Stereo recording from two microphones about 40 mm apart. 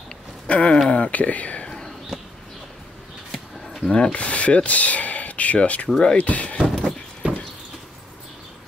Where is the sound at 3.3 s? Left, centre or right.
Centre.